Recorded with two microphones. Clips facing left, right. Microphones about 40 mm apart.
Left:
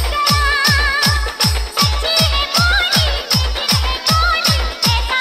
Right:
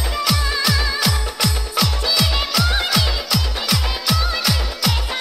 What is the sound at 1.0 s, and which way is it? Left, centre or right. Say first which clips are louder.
Music: left 3 dB; centre.